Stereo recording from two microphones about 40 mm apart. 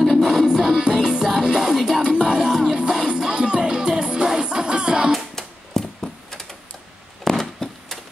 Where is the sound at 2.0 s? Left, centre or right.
Right.